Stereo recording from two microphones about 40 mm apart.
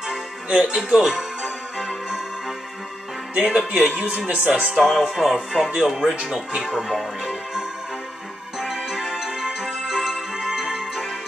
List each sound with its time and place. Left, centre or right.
0.5 s speech: right
3.3 s speech: right
4.5 s music: right
5.1 s music: centre
6.2 s music: centre
6.9 s speech: centre
8.5 s music: centre